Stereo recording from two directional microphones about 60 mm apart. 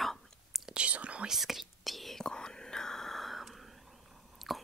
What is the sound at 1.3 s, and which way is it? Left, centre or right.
Whispering, centre.